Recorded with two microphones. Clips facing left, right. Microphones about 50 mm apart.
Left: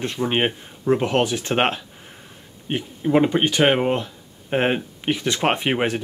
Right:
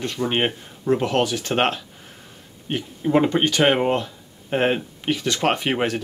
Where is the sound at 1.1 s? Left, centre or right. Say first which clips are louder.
Left 1 dB; left.